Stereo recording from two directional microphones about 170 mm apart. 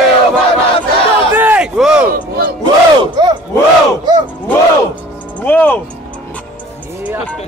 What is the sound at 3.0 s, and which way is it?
Battle cry, 25° right (ahead or behind).